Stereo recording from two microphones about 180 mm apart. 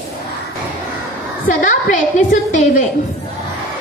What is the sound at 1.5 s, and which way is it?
A woman's voice, 45° left (ahead or behind).